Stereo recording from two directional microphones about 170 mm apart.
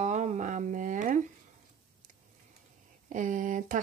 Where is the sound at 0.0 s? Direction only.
45° right (ahead or behind).